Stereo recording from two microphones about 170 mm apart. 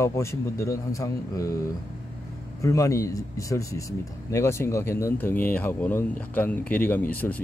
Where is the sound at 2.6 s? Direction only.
20° left (ahead or behind).